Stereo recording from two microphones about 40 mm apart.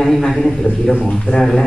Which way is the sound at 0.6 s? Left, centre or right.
Centre.